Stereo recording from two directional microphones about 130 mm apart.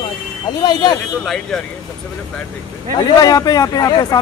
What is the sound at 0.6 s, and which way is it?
Speech, 35° left (ahead or behind).